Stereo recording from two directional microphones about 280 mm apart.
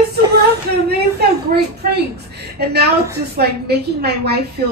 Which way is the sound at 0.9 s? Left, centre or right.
Right.